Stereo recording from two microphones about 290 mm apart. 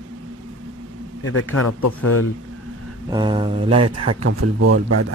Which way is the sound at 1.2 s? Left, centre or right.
Left.